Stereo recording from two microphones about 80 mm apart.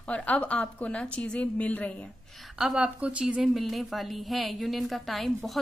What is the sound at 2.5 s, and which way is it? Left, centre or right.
A woman's voice, centre.